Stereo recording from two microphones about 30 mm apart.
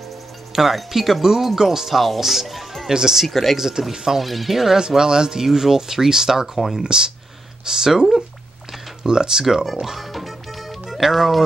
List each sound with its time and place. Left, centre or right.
0.6 s speech: centre
2.4 s music: centre
2.9 s speech: centre
3.3 s speech: centre
3.5 s speech: centre
4.2 s speech: centre
4.7 s speech: right
9.9 s speech: centre